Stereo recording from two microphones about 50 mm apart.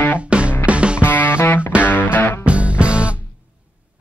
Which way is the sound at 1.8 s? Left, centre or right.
Left.